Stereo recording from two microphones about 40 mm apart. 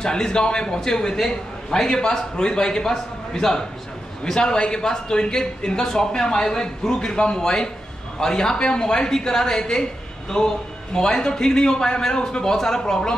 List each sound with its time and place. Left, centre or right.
0.0 s a man's voice: left